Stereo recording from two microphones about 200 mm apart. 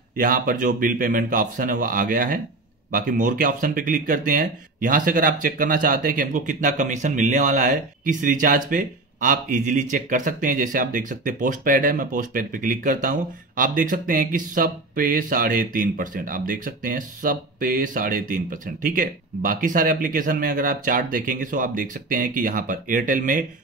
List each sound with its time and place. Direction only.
0.2 s speech: 45° right (ahead or behind)